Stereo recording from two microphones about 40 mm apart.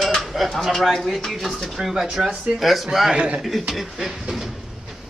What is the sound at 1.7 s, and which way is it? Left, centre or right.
Speech, centre.